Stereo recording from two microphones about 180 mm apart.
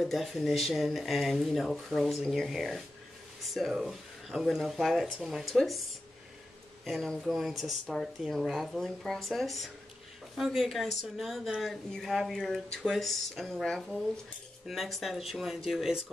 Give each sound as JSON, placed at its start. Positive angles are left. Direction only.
{"t": 0.0, "sound": "speech", "side_deg": 0}
{"t": 6.8, "sound": "speech", "side_deg": 0}